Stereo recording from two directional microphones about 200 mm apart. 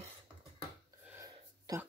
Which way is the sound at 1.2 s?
15° right (ahead or behind).